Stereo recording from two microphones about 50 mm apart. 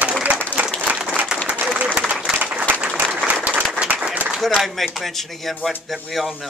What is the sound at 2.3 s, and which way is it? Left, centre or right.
Applause, centre.